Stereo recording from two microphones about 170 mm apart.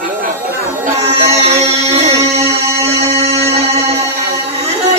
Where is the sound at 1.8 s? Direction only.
40° right (ahead or behind).